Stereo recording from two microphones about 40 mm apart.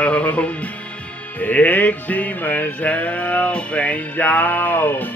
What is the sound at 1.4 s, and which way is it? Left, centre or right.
Music, left.